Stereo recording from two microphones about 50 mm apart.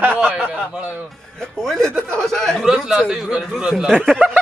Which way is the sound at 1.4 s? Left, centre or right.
Centre.